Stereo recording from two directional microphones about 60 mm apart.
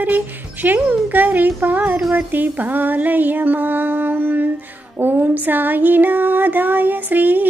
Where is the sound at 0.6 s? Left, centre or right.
Right.